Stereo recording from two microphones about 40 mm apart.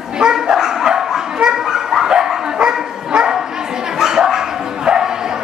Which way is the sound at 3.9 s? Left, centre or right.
Centre.